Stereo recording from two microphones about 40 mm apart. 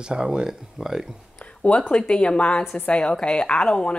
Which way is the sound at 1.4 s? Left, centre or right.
Left.